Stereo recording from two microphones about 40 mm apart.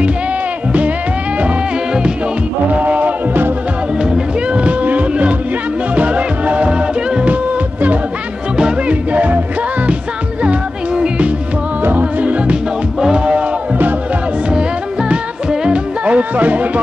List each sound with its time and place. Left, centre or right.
2.7 s music: right
4.6 s a sound: right
5.9 s music: right
8.5 s music: right
9.1 s music: right
10.4 s music: right
11.8 s music: right
13.0 s a sound: right
15.6 s music: right